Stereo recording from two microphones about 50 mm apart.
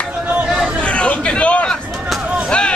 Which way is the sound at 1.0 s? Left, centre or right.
Left.